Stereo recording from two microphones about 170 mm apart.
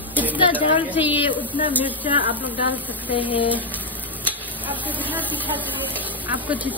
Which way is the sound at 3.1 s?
30° left (ahead or behind).